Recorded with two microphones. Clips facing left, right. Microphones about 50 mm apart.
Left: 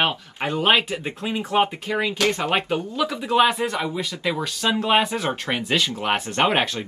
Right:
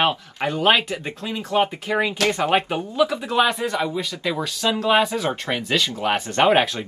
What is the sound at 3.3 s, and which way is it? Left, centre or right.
Speech, centre.